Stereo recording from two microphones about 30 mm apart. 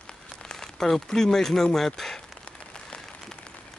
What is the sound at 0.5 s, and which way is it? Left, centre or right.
Crumpling, centre.